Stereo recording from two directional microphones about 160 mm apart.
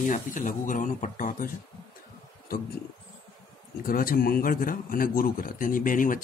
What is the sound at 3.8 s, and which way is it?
Speech, 65° left (ahead or behind).